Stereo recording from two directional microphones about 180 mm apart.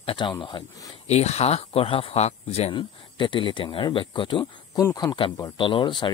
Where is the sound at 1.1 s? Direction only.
35° left (ahead or behind).